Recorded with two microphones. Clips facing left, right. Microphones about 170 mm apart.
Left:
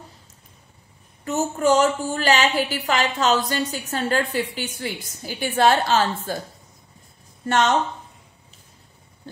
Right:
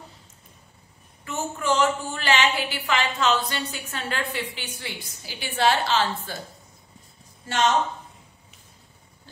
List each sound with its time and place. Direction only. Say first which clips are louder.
1.2 s a woman's voice: left 8 dB; 40° left (ahead or behind)
7.4 s speech: left 3 dB; 55° left (ahead or behind)